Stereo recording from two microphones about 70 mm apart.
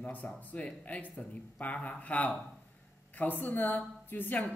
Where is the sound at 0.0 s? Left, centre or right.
Left.